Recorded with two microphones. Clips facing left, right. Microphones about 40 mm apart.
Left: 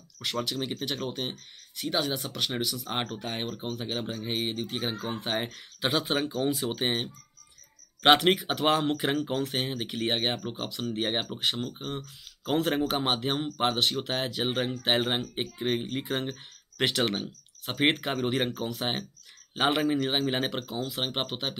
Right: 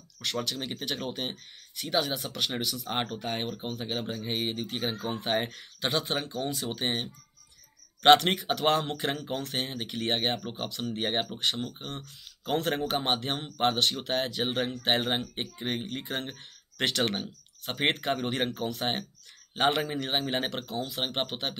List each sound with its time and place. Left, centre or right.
0.2 s speech: centre